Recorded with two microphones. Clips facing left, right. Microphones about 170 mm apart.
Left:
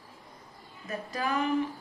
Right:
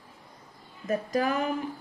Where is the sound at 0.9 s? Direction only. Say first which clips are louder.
Right 7 dB; 45° right (ahead or behind).